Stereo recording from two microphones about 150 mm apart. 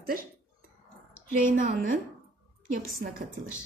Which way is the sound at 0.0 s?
70° right (ahead or behind).